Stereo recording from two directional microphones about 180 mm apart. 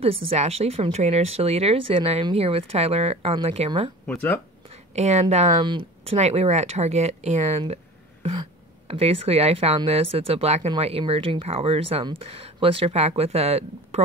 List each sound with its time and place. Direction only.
0.0 s speech: 35° right (ahead or behind)
4.1 s speech: 10° left (ahead or behind)
4.9 s speech: 40° right (ahead or behind)